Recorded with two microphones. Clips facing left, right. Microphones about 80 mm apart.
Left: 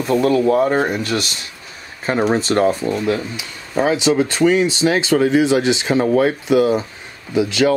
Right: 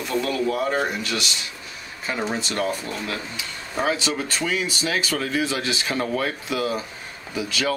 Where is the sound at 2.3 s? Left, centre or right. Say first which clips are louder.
Left 10 dB; left.